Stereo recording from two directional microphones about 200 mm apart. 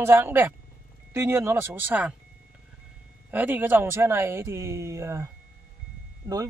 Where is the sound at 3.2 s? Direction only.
10° right (ahead or behind).